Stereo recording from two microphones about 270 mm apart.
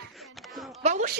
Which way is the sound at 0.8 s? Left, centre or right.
Right.